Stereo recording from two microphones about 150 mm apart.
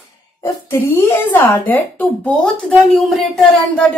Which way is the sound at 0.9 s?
15° left (ahead or behind).